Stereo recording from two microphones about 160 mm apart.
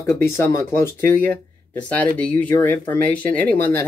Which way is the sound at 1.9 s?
10° left (ahead or behind).